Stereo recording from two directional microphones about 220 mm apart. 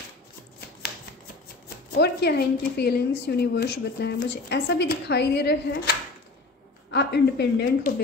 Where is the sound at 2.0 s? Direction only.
45° left (ahead or behind).